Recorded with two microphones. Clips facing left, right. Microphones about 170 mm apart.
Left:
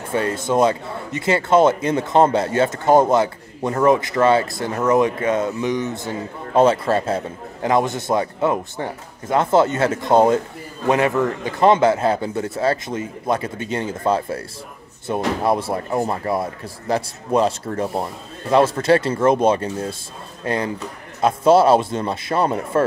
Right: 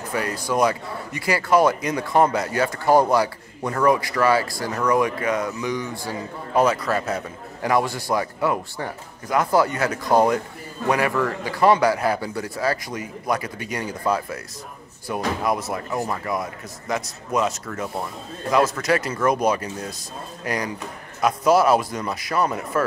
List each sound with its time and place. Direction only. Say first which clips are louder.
0.1 s speech: left 5 dB; 25° left (ahead or behind)